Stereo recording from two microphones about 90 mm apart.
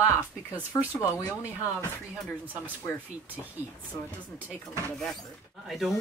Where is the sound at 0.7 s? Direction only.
45° left (ahead or behind).